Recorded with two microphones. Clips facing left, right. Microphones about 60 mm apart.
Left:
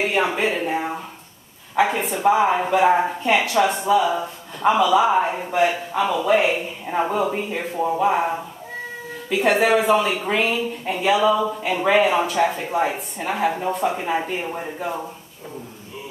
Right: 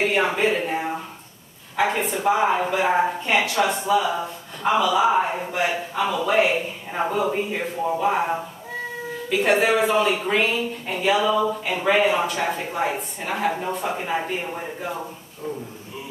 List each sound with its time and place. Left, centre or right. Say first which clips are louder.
0.0 s speech: even; centre
0.5 s a sound: even; centre
1.8 s speech: left 2 dB; centre